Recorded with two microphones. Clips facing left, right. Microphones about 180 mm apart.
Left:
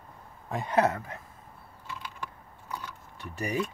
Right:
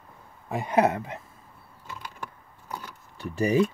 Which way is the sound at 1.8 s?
45° right (ahead or behind).